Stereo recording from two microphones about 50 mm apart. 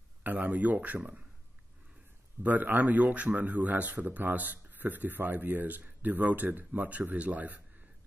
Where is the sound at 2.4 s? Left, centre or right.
Right.